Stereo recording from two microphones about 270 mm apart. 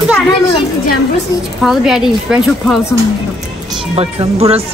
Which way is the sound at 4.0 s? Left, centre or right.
Right.